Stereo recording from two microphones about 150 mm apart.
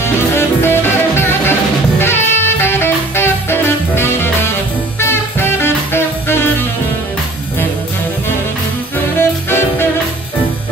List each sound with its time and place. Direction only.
0.0 s music: 15° left (ahead or behind)
9.1 s music: 15° left (ahead or behind)